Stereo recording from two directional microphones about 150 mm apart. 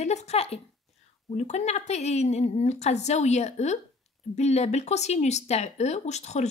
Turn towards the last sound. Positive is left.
turn(degrees=50)  # may be behind; listen again after turning